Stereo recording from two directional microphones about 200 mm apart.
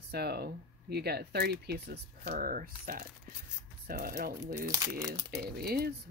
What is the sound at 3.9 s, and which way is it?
Speech, 50° right (ahead or behind).